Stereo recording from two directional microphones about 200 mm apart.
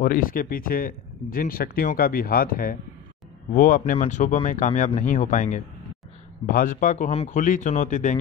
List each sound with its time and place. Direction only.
0.0 s speech: 45° left (ahead or behind)